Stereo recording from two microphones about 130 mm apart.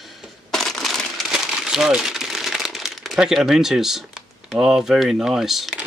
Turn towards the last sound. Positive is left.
turn(degrees=0)  # may be behind; listen again after turning